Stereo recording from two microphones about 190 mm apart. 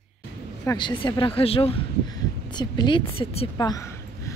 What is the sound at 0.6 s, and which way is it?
Speech, 25° left (ahead or behind).